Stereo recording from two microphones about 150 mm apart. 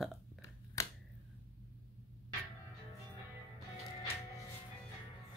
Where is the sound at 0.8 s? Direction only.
20° left (ahead or behind).